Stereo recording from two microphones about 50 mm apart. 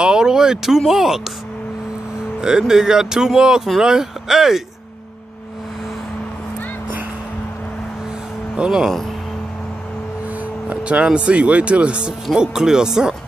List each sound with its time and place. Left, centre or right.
0.0 s speech: centre
2.4 s speech: centre
8.5 s speech: centre
10.7 s speech: right
12.4 s speech: centre